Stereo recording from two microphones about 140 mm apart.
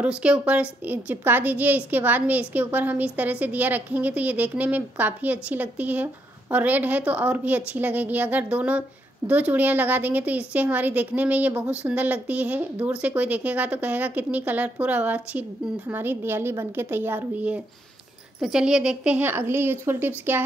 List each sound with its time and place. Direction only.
0.0 s a woman's voice: 10° right (ahead or behind)